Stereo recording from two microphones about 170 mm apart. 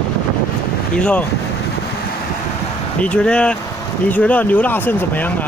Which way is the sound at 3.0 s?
5° left (ahead or behind).